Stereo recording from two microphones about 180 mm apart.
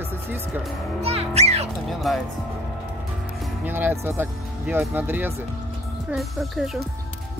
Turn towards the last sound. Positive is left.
turn(degrees=0)  # may be behind; listen again after turning